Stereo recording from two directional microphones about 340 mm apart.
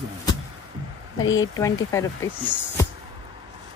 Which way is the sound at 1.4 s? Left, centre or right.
Centre.